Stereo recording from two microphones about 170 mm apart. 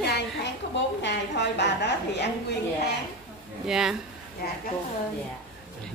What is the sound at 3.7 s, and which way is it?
Speech, centre (ahead or behind).